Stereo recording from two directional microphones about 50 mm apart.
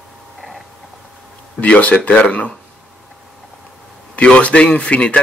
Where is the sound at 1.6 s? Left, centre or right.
Left.